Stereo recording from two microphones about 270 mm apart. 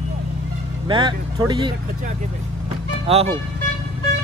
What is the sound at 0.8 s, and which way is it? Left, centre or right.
Speech, centre.